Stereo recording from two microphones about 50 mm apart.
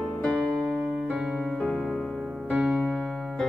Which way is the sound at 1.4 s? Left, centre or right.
Centre.